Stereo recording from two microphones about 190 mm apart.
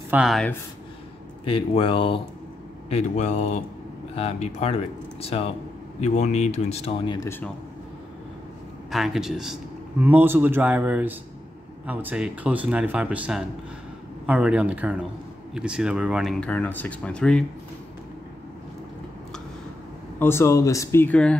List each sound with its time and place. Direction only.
0.1 s speech: centre (ahead or behind)
1.4 s speech: 30° left (ahead or behind)
7.2 s speech: 10° left (ahead or behind)
8.9 s a man's voice: centre (ahead or behind)
20.2 s speech: 15° left (ahead or behind)